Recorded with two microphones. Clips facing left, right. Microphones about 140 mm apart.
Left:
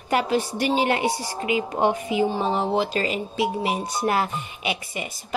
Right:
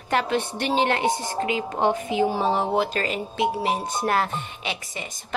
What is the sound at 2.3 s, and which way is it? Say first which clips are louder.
Speech: even; 5° right (ahead or behind).